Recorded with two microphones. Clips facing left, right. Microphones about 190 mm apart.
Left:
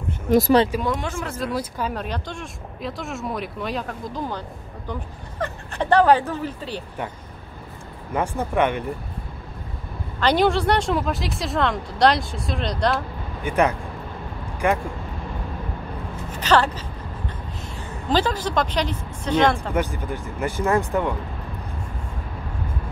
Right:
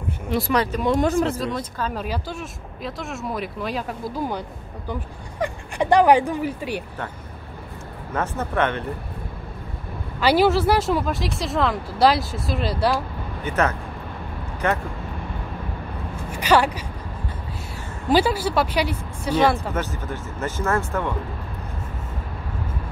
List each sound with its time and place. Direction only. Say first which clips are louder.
0.3 s speech: left 7 dB; 40° left (ahead or behind)
0.9 s speech: right 9 dB; 40° right (ahead or behind)
1.4 s speech: left 1 dB; 5° left (ahead or behind)
2.0 s speech: right 2 dB; 5° right (ahead or behind)
8.1 s speech: left 2 dB; 10° left (ahead or behind)
10.2 s speech: right 1 dB; 5° right (ahead or behind)
13.5 s speech: left 2 dB; 15° left (ahead or behind)
16.3 s speech: right 1 dB; 10° right (ahead or behind)
18.0 s speech: right 3 dB; 10° right (ahead or behind)
19.7 s speech: left 3 dB; 15° left (ahead or behind)